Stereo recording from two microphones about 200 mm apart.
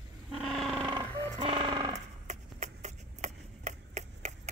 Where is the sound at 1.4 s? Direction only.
25° right (ahead or behind).